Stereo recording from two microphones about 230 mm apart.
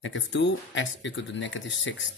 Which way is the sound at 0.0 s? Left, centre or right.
Left.